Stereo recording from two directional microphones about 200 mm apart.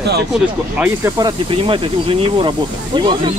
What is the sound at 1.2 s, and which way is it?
Speech, 25° right (ahead or behind).